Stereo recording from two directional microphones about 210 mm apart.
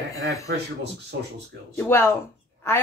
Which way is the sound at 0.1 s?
15° left (ahead or behind).